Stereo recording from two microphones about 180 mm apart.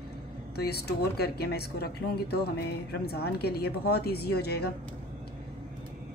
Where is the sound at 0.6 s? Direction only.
60° left (ahead or behind).